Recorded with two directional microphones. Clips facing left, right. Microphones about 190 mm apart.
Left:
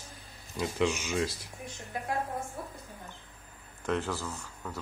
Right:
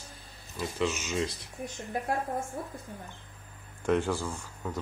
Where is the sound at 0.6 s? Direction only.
15° left (ahead or behind).